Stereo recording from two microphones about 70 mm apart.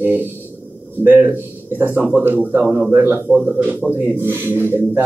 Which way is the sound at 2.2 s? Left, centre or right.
Right.